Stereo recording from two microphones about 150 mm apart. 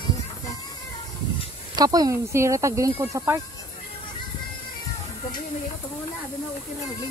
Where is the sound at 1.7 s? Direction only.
25° right (ahead or behind).